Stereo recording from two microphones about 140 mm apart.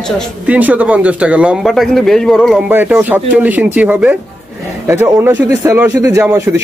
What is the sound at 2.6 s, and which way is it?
A man's voice, 15° right (ahead or behind).